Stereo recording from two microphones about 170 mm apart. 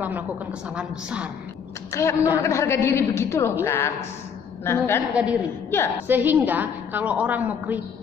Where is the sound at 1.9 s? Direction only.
15° left (ahead or behind).